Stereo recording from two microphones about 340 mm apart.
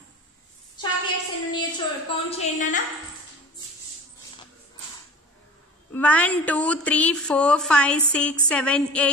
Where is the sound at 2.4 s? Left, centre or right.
Left.